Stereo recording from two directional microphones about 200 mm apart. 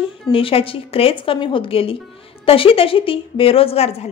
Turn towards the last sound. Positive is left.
turn(degrees=30)  # may be behind; listen again after turning